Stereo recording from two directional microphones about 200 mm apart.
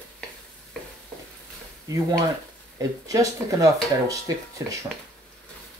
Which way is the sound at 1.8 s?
15° right (ahead or behind).